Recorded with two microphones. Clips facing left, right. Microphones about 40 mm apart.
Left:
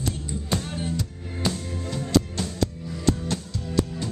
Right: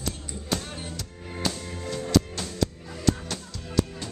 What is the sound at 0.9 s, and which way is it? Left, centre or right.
Music, centre.